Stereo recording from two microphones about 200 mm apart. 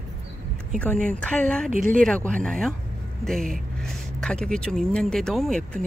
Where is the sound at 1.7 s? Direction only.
40° right (ahead or behind).